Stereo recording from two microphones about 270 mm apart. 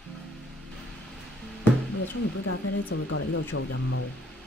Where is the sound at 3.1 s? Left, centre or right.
Left.